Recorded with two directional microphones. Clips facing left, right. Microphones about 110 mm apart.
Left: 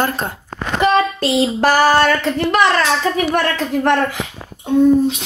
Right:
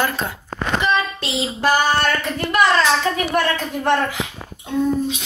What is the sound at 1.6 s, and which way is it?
Female singing, 75° left (ahead or behind).